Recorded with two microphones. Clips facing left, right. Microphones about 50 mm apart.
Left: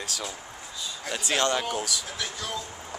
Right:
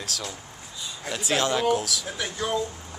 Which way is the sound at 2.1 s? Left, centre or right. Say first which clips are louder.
Right 5 dB; right.